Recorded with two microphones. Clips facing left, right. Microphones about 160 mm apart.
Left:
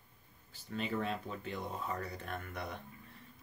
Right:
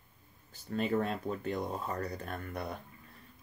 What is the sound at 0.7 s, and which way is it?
Speech, 45° right (ahead or behind).